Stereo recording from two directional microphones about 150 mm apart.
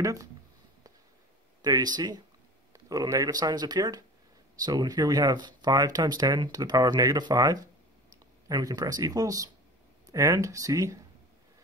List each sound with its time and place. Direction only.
0.0 s speech: 20° right (ahead or behind)
1.6 s speech: 25° right (ahead or behind)